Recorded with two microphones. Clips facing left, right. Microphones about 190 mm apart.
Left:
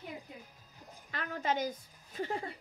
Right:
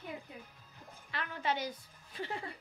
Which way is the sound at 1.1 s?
40° left (ahead or behind).